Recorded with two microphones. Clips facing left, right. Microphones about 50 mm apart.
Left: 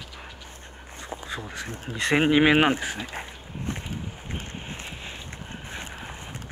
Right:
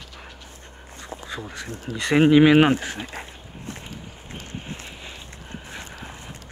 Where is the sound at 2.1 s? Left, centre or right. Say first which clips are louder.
Right 5 dB; centre.